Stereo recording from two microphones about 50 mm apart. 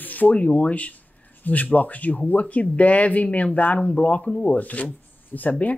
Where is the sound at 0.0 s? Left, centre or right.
Left.